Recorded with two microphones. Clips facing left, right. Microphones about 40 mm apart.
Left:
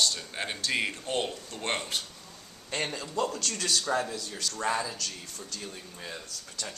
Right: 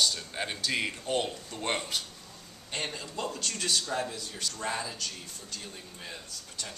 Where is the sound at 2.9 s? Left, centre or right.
Left.